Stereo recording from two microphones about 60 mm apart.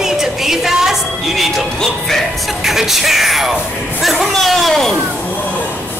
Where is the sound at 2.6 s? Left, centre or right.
Centre.